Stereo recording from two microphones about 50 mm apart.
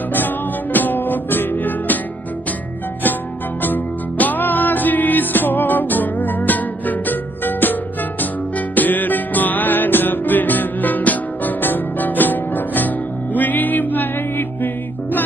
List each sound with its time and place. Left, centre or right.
0.7 s music: left
3.6 s music: left